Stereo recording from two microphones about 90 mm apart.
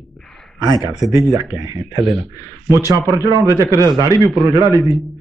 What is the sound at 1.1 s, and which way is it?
Speech, 40° right (ahead or behind).